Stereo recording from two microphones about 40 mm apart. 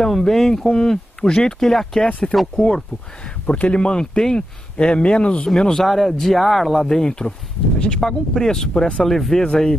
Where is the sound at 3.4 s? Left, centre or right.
Left.